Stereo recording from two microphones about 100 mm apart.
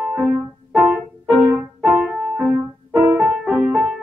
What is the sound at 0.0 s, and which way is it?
Music, centre (ahead or behind).